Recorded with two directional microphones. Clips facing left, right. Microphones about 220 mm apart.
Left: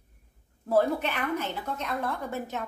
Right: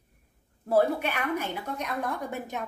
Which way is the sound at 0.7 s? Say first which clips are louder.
Right 1 dB; 10° right (ahead or behind).